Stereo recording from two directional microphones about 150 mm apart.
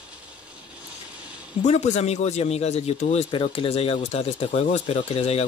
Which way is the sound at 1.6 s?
50° left (ahead or behind).